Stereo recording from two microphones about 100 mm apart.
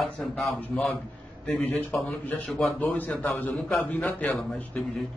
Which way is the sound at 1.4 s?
15° left (ahead or behind).